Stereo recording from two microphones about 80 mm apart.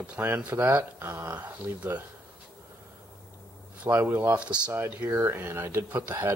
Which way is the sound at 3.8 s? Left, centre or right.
Right.